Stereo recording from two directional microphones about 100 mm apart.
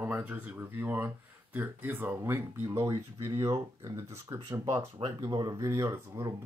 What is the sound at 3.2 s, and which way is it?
Speech, 40° right (ahead or behind).